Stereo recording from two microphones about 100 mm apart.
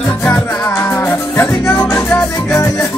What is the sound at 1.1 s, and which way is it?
Music, 20° left (ahead or behind).